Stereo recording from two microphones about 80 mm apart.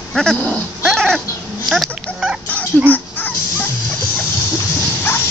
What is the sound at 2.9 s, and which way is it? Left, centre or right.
Dog, left.